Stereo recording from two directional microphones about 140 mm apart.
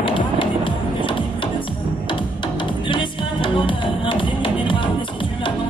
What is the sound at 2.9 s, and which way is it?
Music, 35° left (ahead or behind).